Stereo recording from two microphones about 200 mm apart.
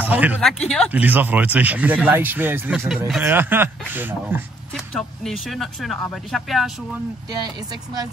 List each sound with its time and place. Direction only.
0.0 s speech: 10° right (ahead or behind)
1.0 s speech: 10° right (ahead or behind)
4.7 s speech: centre (ahead or behind)
7.2 s speech: 20° right (ahead or behind)